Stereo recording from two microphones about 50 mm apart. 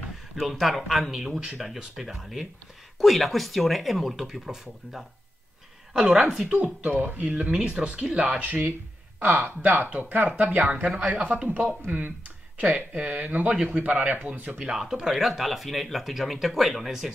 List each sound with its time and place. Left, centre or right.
0.4 s speech: centre
6.5 s speech: right; by 8.2 s centre
8.2 s speech: right
11.9 s speech: right
14.7 s speech: centre